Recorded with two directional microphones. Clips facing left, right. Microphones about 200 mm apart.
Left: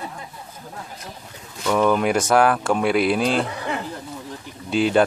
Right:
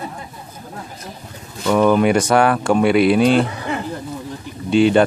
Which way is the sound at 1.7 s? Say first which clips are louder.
Right 5 dB; centre (ahead or behind).